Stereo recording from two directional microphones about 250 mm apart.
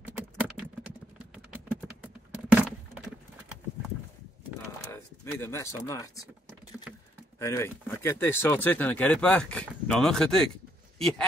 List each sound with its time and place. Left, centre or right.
0.4 s typing: centre
2.5 s a sound: centre
4.9 s speech: centre
7.3 s speech: centre